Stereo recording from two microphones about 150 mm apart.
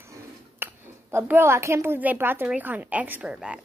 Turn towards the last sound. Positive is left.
turn(degrees=-5)  # may be behind; listen again after turning